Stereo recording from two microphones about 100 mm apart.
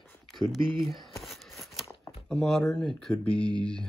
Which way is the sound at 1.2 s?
Centre (ahead or behind).